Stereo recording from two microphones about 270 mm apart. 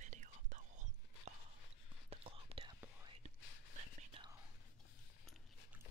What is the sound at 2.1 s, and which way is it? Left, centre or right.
Whispering, right.